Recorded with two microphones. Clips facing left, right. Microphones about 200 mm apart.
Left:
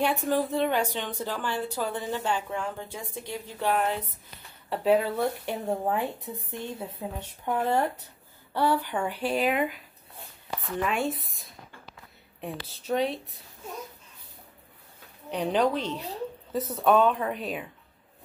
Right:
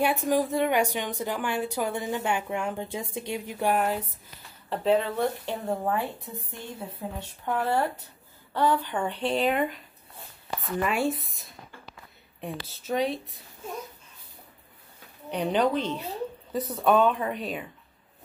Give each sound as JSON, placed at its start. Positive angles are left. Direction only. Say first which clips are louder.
{"t": 0.0, "sound": "a woman's voice", "louder": "right 1 dB", "side_deg": -10}
{"t": 4.6, "sound": "speech", "louder": "left 1 dB", "side_deg": 10}
{"t": 12.4, "sound": "speech", "louder": "even", "side_deg": 0}
{"t": 15.3, "sound": "speech", "louder": "right 1 dB", "side_deg": 0}